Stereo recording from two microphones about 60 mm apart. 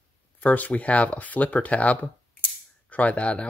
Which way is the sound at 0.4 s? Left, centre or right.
Left.